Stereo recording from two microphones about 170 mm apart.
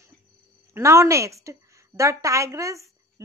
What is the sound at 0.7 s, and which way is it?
A woman's voice, 15° right (ahead or behind).